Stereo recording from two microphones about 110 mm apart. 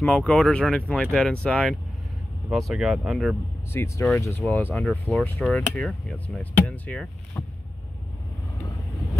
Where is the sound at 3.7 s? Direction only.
20° left (ahead or behind); by 7.4 s 5° left (ahead or behind).